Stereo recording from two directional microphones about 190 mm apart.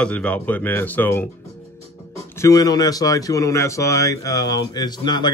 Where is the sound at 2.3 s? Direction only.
15° left (ahead or behind).